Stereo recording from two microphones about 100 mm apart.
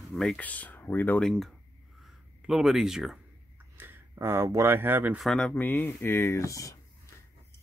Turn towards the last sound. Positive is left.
turn(degrees=30)  # may be behind; listen again after turning